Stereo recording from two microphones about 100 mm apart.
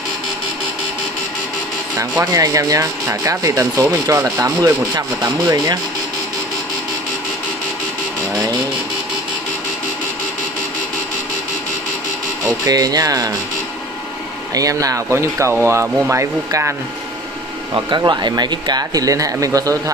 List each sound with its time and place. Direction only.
2.0 s speech: 35° right (ahead or behind)
12.6 s speech: 40° right (ahead or behind)
14.5 s speech: 35° right (ahead or behind)
17.7 s speech: 50° right (ahead or behind)